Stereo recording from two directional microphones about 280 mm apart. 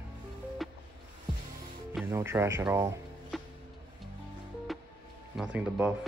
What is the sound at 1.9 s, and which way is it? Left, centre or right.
Speech, centre.